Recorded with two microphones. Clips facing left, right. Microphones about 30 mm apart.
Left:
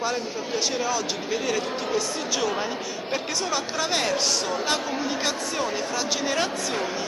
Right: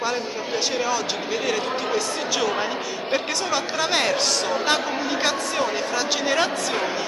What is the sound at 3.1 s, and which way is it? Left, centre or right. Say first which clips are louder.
Speech: right 3 dB; centre.